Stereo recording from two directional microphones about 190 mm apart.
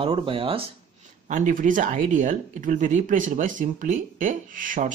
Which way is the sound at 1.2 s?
40° right (ahead or behind).